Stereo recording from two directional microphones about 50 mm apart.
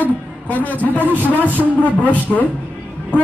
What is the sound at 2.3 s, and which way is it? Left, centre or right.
Speech, left.